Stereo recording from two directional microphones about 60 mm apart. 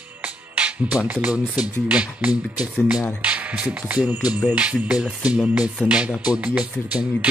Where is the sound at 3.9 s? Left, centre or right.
Right.